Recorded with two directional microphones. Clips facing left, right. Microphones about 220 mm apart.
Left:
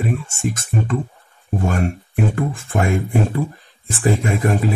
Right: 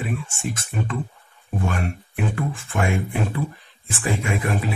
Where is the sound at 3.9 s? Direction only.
40° left (ahead or behind).